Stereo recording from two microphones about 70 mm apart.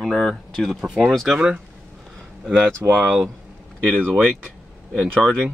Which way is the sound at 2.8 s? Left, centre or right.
Right.